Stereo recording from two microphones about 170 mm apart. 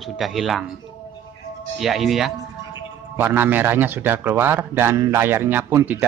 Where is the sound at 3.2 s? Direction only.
10° right (ahead or behind).